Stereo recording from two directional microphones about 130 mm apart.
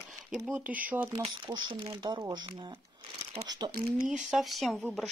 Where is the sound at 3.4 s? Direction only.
30° right (ahead or behind).